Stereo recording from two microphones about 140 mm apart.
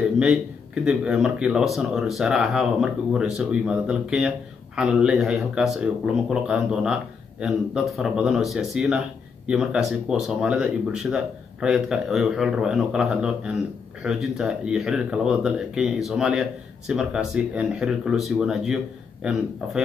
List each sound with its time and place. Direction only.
0.8 s speech: 5° right (ahead or behind)